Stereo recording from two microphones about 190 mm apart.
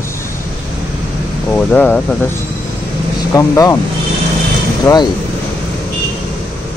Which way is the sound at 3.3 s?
15° left (ahead or behind).